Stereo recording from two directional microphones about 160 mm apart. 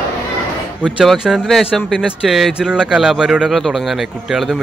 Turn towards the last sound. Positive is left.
turn(degrees=0)  # may be behind; listen again after turning